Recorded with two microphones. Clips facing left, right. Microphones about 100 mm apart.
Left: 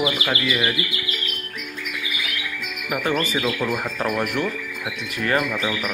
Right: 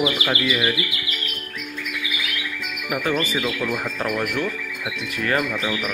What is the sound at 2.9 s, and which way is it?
Speech, 5° left (ahead or behind).